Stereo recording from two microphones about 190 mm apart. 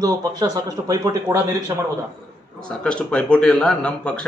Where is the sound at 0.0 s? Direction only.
20° right (ahead or behind).